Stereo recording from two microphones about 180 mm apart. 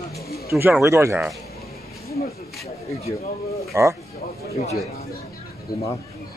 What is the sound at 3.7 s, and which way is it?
Speech, 15° right (ahead or behind).